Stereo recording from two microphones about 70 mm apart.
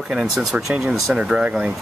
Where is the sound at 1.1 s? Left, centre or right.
Centre.